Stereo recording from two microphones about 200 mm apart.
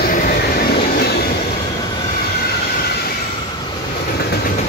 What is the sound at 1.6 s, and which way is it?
Train, 20° left (ahead or behind).